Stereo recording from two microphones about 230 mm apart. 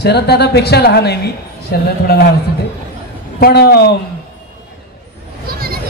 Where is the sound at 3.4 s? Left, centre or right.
Left.